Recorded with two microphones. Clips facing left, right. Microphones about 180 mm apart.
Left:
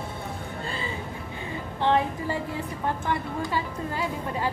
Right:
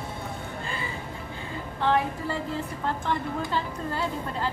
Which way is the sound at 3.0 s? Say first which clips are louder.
Even; 10° left (ahead or behind).